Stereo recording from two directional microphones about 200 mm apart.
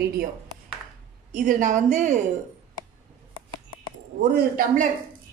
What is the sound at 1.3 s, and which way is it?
Speech, 40° right (ahead or behind).